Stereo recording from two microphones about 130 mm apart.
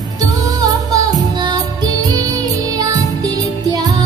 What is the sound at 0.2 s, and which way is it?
Music, 30° right (ahead or behind).